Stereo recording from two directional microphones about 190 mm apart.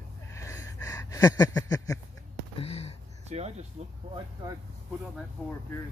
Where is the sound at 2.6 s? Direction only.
30° left (ahead or behind).